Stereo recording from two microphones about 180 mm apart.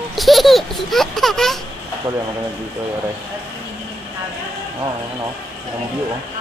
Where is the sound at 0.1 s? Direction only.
Centre (ahead or behind).